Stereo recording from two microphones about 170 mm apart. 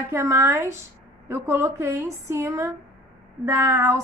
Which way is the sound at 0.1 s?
15° right (ahead or behind).